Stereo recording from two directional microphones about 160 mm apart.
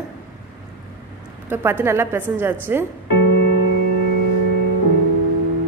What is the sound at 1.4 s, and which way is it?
A woman's voice, 15° right (ahead or behind).